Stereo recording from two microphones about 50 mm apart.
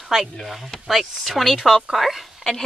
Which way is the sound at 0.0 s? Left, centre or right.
Centre.